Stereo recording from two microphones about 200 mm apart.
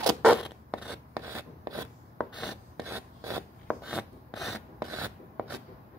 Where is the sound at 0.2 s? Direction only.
5° right (ahead or behind).